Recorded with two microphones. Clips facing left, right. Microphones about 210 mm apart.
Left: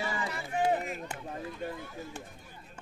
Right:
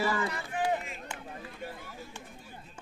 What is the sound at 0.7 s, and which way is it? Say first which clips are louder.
Run: left 3 dB; 40° left (ahead or behind).